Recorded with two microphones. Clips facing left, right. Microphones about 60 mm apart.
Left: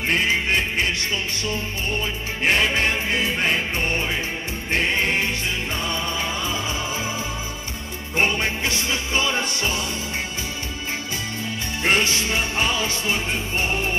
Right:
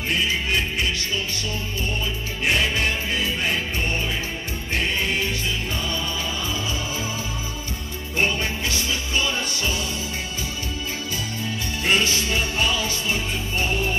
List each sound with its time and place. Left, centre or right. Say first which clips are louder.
0.1 s music: left 2 dB; left
2.4 s music: left 2 dB; left
4.7 s choir: left 3 dB; left
5.9 s music: left 2 dB; left
8.2 s music: left 2 dB; left
11.8 s music: left 1 dB; left